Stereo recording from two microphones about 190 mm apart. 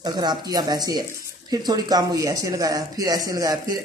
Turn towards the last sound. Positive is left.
turn(degrees=-20)  # may be behind; listen again after turning